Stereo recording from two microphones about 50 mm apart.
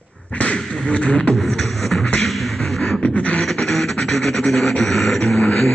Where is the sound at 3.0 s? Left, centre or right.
Left.